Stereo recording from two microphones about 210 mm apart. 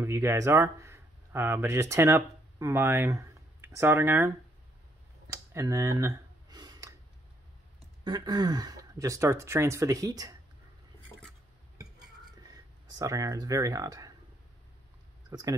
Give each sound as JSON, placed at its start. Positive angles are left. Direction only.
{"t": 0.0, "sound": "speech", "side_deg": -10}
{"t": 5.3, "sound": "a sound", "side_deg": -15}
{"t": 8.0, "sound": "speech", "side_deg": -20}
{"t": 13.0, "sound": "speech", "side_deg": -15}
{"t": 15.2, "sound": "speech", "side_deg": -15}